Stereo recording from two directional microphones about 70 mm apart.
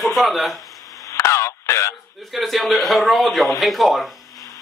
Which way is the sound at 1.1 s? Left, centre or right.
Left.